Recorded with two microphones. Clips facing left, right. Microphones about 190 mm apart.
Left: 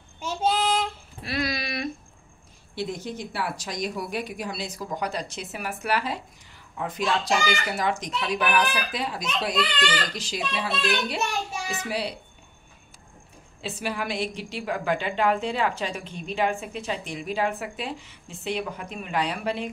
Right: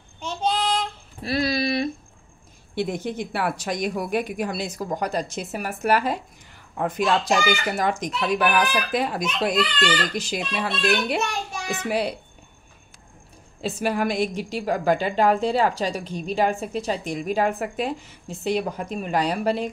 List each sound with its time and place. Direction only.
0.2 s child singing: 5° left (ahead or behind)
1.2 s a sound: 30° right (ahead or behind)
2.7 s a child's voice: 55° right (ahead or behind)
13.6 s a woman's voice: 45° right (ahead or behind)